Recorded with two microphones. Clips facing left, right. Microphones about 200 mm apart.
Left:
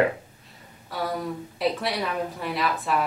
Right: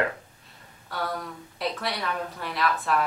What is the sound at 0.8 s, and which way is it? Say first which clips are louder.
Speech: left 3 dB; centre (ahead or behind).